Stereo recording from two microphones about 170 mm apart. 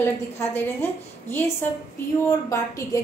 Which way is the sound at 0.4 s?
15° left (ahead or behind).